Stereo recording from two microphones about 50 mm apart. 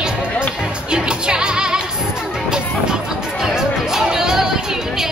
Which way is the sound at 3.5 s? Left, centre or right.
Centre.